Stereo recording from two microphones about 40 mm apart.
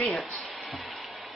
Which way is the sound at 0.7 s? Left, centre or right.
Centre.